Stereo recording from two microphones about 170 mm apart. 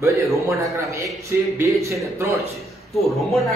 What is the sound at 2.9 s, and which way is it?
Speech, centre (ahead or behind).